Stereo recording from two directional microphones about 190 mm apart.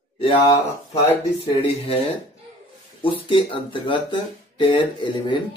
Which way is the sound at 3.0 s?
25° left (ahead or behind).